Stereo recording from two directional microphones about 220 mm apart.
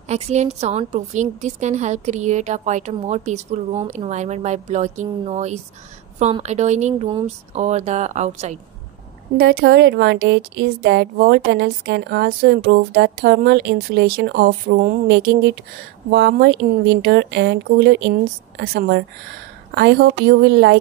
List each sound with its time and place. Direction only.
0.1 s a woman's voice: 30° right (ahead or behind)
9.4 s a woman's voice: 45° right (ahead or behind)